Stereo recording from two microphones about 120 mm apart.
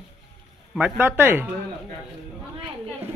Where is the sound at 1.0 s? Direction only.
20° right (ahead or behind).